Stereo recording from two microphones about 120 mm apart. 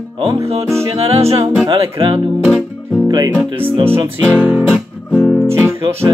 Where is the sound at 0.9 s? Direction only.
55° right (ahead or behind).